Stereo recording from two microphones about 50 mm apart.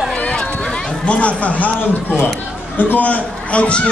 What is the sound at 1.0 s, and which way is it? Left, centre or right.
A man's voice, left.